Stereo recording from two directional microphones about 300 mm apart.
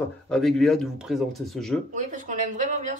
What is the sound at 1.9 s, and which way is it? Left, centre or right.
A woman's voice, right.